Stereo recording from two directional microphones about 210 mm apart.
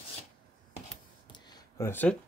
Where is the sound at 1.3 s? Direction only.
20° left (ahead or behind).